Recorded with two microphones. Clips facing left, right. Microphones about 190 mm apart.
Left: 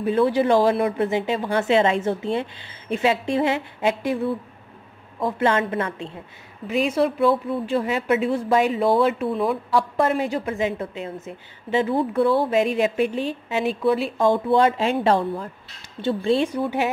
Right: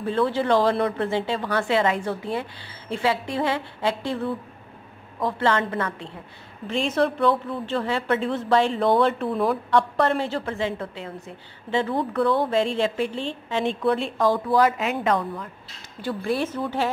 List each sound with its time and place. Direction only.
0.0 s a woman's voice: 15° left (ahead or behind)
6.7 s speech: 5° left (ahead or behind)
10.1 s a woman's voice: 15° left (ahead or behind)
14.1 s a woman's voice: 20° left (ahead or behind)